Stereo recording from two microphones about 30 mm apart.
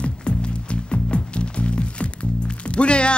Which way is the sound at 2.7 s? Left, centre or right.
Left.